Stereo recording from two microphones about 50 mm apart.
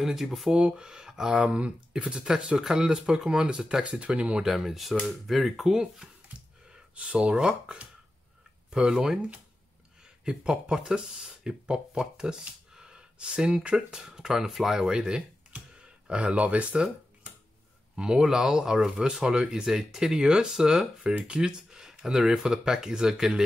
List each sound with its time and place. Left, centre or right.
0.0 s speech: centre
0.6 s speech: centre
4.5 s speech: centre
6.7 s speech: right
10.2 s speech: centre
17.9 s speech: centre
21.4 s speech: centre